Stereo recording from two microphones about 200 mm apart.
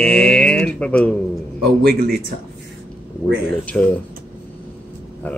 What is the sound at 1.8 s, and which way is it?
Speech, 50° right (ahead or behind).